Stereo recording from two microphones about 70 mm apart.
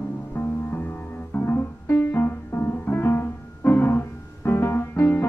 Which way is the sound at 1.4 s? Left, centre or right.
Left.